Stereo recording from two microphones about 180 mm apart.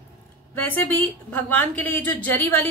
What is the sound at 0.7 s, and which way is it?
A woman's voice, 10° left (ahead or behind).